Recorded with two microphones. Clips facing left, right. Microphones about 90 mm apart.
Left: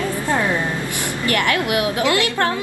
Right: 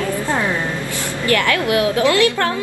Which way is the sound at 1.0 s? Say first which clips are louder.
Right 3 dB; 20° left (ahead or behind).